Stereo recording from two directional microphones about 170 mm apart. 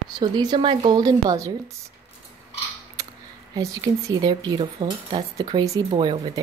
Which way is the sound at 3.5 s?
20° right (ahead or behind).